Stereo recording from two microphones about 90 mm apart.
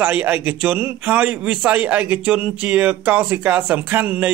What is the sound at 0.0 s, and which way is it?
A man's voice, 20° right (ahead or behind).